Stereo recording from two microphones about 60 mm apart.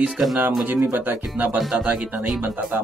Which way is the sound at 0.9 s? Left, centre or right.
Right.